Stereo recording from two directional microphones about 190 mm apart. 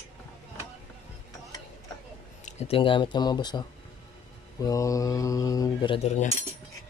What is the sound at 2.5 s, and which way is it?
Speech, 35° left (ahead or behind).